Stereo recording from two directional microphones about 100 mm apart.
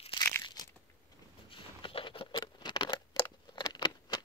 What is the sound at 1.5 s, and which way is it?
Patter, 60° left (ahead or behind).